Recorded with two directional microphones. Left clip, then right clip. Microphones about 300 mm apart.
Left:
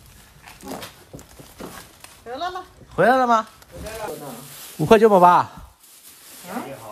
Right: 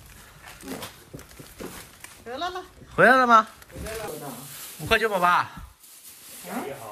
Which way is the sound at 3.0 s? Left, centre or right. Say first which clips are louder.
Even; centre.